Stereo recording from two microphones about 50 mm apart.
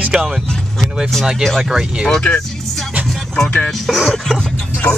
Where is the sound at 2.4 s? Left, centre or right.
Centre.